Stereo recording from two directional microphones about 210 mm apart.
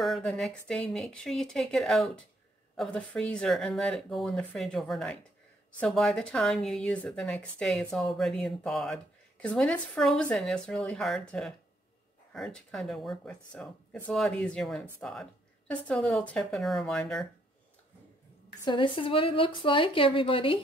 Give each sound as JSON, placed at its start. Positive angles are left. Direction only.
{"t": 0.0, "sound": "speech", "side_deg": 0}
{"t": 18.7, "sound": "speech", "side_deg": 25}